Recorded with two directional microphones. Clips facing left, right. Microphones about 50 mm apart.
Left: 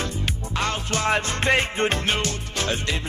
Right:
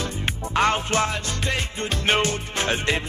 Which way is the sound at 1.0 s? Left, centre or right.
Left.